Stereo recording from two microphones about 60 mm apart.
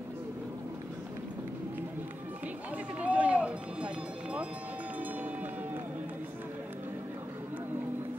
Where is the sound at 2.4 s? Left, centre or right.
Right.